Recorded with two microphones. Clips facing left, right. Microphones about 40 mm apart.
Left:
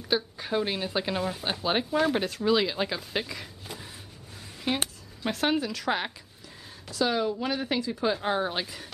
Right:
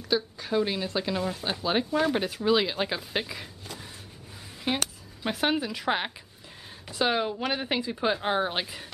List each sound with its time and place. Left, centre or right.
0.1 s speech: centre
4.7 s speech: centre
6.9 s a woman's voice: right